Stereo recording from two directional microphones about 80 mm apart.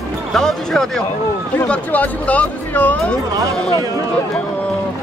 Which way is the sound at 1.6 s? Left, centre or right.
Centre.